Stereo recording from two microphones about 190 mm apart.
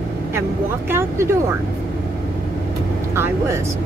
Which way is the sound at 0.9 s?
15° right (ahead or behind).